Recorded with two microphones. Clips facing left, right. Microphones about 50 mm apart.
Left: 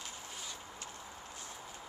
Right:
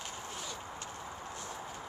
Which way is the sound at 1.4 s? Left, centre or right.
Right.